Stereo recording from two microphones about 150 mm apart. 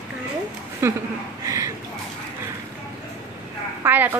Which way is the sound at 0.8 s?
20° right (ahead or behind).